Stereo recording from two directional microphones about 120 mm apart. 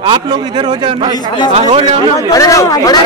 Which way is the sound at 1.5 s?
55° right (ahead or behind).